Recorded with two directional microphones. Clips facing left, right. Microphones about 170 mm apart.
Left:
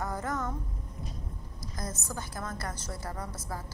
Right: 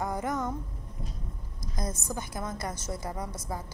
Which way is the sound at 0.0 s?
15° right (ahead or behind).